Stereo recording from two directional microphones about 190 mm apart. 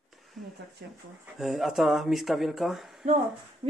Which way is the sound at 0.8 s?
55° right (ahead or behind).